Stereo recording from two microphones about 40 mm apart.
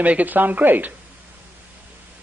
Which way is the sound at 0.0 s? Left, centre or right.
Right.